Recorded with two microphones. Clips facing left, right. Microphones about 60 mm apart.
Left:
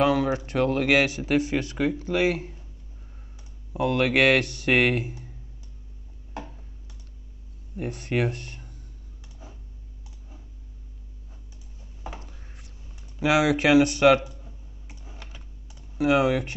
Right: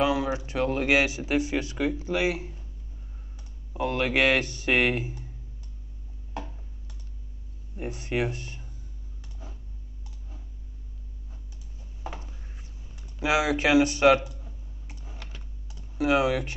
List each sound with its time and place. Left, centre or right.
0.0 s speech: left
3.7 s speech: left
7.7 s speech: left
9.4 s a sound: centre
13.2 s speech: left
14.4 s a sound: centre
15.1 s typing: centre
16.0 s speech: left